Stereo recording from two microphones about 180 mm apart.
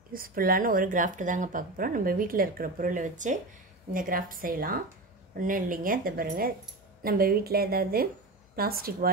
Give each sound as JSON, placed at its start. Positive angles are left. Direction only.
{"t": 0.1, "sound": "a woman's voice", "side_deg": -50}